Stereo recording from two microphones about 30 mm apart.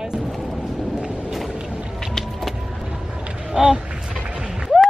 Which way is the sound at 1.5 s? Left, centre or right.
Right.